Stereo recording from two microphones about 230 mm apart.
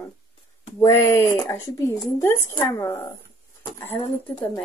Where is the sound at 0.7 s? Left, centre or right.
Centre.